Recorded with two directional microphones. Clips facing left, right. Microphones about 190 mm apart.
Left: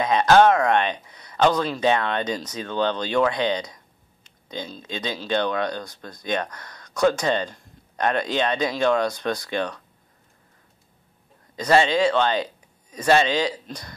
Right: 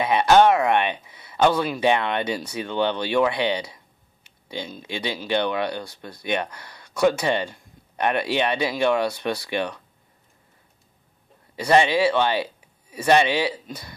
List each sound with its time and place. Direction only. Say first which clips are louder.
0.0 s speech: even; 10° right (ahead or behind)
11.5 s speech: even; 15° right (ahead or behind)
13.5 s speech: even; 5° right (ahead or behind)